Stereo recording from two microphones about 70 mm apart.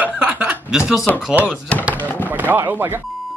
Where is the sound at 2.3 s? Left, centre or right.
Right.